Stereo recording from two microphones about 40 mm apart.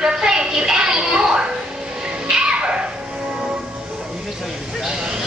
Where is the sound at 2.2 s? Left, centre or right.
Centre.